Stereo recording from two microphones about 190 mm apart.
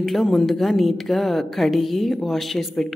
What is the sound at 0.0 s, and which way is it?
A woman's voice, centre (ahead or behind).